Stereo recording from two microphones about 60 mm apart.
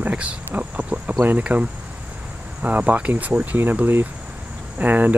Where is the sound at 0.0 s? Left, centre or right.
Right.